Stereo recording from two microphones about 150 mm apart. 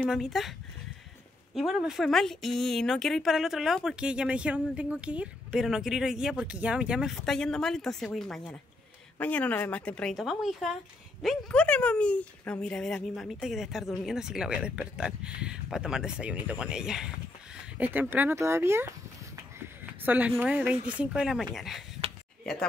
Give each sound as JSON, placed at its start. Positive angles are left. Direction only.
{"t": 0.0, "sound": "a woman's voice", "side_deg": 0}